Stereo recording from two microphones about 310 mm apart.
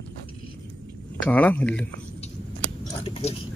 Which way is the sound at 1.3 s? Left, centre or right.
Centre.